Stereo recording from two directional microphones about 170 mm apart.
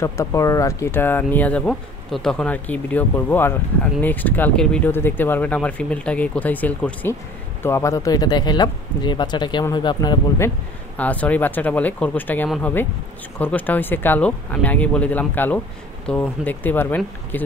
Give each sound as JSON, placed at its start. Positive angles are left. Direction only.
{"t": 0.0, "sound": "speech", "side_deg": 20}
{"t": 11.0, "sound": "speech", "side_deg": 10}